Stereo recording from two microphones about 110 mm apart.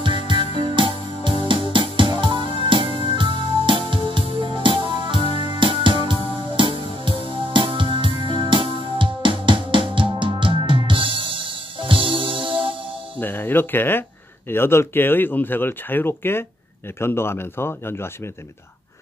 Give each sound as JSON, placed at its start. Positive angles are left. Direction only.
{"t": 0.0, "sound": "music", "side_deg": -50}
{"t": 5.2, "sound": "music", "side_deg": 60}
{"t": 5.5, "sound": "music", "side_deg": -50}
{"t": 13.2, "sound": "a sound", "side_deg": 20}
{"t": 14.5, "sound": "speech", "side_deg": 20}